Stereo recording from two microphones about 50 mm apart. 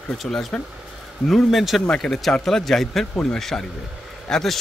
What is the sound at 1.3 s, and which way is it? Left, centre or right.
Speech, centre.